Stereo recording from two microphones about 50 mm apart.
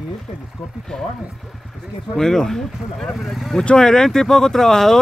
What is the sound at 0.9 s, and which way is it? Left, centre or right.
Speech, centre.